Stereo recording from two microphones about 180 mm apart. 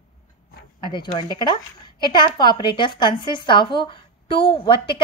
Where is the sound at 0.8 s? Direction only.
25° left (ahead or behind).